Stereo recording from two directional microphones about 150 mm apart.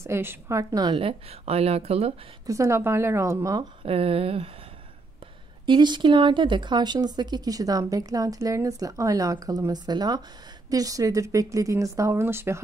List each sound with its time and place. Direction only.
0.0 s speech: 15° right (ahead or behind)
1.4 s speech: 45° right (ahead or behind)
2.4 s speech: 20° right (ahead or behind)
3.8 s speech: 40° right (ahead or behind)
5.7 s speech: 30° right (ahead or behind)